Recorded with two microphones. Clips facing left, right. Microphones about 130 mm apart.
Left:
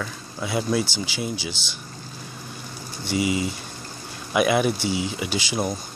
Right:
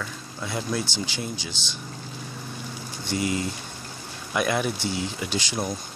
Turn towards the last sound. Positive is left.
turn(degrees=5)  # may be behind; listen again after turning